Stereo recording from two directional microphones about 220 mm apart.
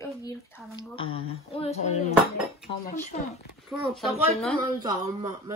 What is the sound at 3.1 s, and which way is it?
Speech, 30° left (ahead or behind).